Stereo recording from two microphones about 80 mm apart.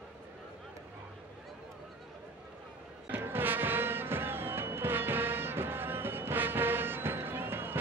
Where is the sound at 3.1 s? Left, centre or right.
Right.